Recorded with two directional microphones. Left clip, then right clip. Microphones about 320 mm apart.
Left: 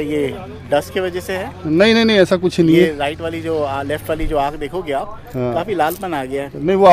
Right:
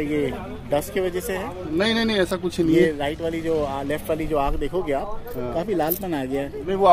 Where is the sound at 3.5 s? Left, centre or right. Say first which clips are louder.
Left 7 dB; left.